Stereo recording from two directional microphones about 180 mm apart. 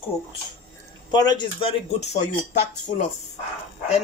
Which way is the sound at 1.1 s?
25° left (ahead or behind).